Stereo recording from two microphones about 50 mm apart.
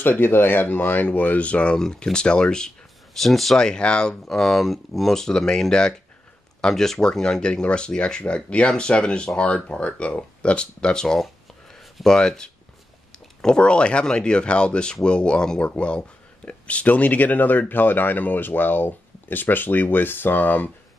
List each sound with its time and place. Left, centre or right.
0.0 s speech: left
1.8 s speech: centre
3.2 s speech: centre
3.5 s speech: centre; by 20.7 s left